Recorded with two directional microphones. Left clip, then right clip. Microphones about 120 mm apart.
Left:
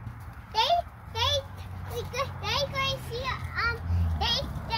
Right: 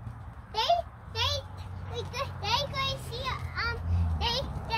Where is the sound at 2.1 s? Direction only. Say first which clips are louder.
Right 1 dB; 25° right (ahead or behind).